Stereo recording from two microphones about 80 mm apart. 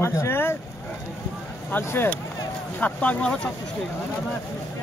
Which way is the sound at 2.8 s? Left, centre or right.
Centre.